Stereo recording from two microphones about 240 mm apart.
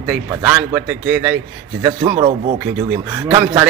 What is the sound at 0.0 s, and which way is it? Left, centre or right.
A man's voice, centre.